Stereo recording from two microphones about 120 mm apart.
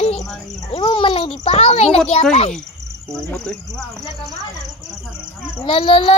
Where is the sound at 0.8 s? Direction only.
45° left (ahead or behind).